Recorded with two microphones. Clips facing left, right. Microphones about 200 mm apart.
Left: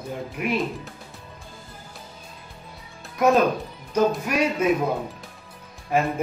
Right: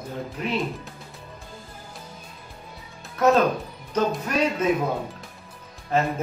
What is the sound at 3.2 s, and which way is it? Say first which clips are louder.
Speech: even; 15° left (ahead or behind).